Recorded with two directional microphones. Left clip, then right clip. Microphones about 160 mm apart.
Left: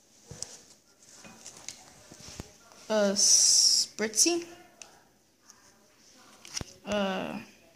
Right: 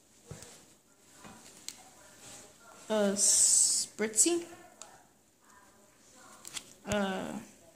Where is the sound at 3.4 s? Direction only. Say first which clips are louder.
Left 7 dB; 25° left (ahead or behind).